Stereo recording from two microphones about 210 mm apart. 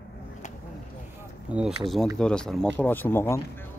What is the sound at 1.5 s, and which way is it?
Speech, 5° right (ahead or behind).